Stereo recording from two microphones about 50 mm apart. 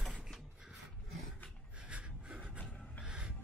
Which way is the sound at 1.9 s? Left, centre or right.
Right.